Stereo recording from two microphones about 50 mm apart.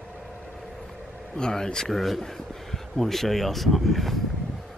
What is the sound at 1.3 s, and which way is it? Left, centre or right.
Speech, centre.